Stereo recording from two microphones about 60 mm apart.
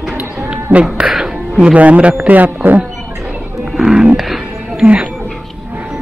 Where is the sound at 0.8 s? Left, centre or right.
Centre.